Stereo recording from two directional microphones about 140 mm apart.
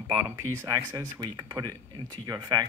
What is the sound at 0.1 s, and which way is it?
Speech, 15° right (ahead or behind).